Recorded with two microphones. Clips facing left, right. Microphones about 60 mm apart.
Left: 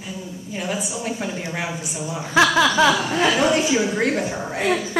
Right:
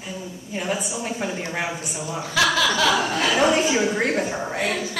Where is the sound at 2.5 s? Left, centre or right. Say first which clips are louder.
Left 4 dB; left.